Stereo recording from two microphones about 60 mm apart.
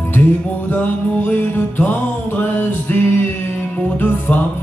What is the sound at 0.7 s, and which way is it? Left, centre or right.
Music, left.